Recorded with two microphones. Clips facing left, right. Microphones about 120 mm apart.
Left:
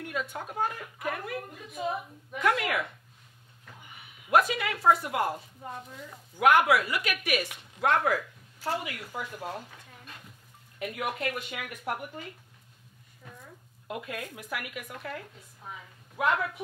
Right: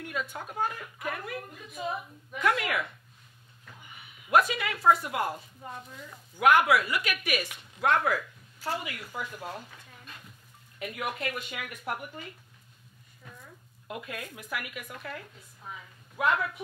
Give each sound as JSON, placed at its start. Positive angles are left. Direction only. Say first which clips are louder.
{"t": 0.0, "sound": "a woman's voice", "louder": "left 1 dB", "side_deg": 45}
{"t": 5.6, "sound": "speech", "louder": "left 2 dB", "side_deg": 35}
{"t": 6.4, "sound": "a woman's voice", "louder": "even", "side_deg": 50}
{"t": 13.2, "sound": "a sound", "louder": "left 1 dB", "side_deg": 35}
{"t": 13.8, "sound": "a woman's voice", "louder": "left 2 dB", "side_deg": 45}
{"t": 16.2, "sound": "a woman's voice", "louder": "even", "side_deg": 45}